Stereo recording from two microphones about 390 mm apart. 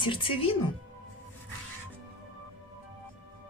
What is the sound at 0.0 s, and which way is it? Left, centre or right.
Speech, centre.